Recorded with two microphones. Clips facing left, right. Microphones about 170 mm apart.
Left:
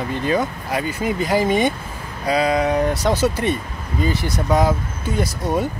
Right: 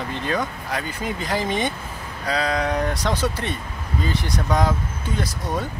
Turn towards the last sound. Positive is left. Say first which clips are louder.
# left 5 dB
turn(degrees=10)  # may be behind; listen again after turning